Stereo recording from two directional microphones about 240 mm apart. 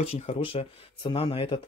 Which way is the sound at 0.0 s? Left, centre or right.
Left.